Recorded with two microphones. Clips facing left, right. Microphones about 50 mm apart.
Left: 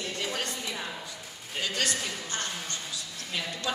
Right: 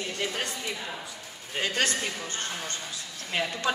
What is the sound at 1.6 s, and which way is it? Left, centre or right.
A woman's voice, right.